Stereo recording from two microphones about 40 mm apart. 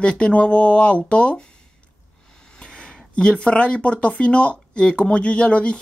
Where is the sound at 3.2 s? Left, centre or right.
Left.